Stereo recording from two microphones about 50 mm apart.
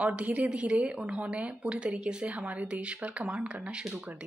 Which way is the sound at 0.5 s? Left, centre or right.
Centre.